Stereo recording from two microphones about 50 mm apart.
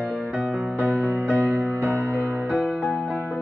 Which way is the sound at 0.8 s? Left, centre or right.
Right.